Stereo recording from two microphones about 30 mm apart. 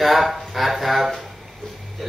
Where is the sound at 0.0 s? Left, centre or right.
Centre.